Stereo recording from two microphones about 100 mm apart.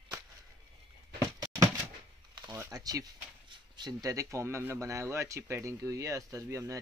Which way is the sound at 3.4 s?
50° right (ahead or behind).